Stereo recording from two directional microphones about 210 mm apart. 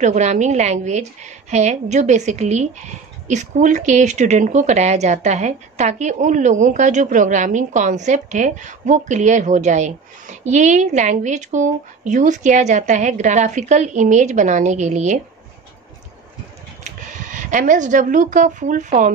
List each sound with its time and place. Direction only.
0.0 s a woman's voice: 35° right (ahead or behind)
16.8 s speech: 35° right (ahead or behind)